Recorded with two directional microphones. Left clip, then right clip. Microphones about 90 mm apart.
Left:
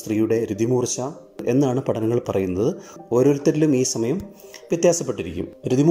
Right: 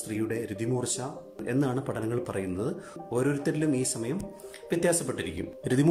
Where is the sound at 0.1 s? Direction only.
35° left (ahead or behind).